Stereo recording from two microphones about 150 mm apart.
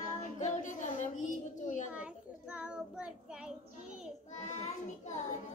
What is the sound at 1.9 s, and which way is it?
Child singing, 10° right (ahead or behind).